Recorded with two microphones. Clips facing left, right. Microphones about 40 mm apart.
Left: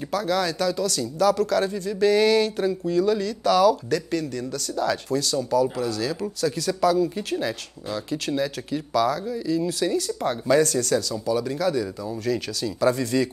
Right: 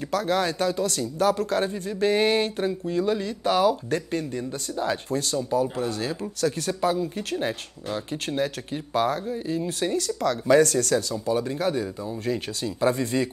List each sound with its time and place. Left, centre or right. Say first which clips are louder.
0.1 s speech: even; right